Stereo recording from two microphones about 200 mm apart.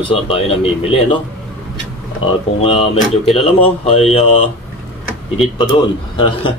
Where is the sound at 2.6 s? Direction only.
30° left (ahead or behind).